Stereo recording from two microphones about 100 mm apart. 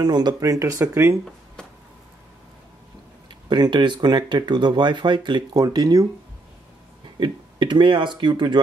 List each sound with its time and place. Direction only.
0.0 s speech: 45° right (ahead or behind)
0.4 s speech: 35° right (ahead or behind)
3.3 s speech: 45° right (ahead or behind)
7.2 s speech: 50° right (ahead or behind)